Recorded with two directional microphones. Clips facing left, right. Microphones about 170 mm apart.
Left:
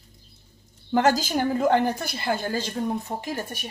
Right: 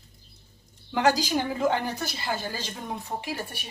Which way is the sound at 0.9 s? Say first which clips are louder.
Left 2 dB; 45° left (ahead or behind).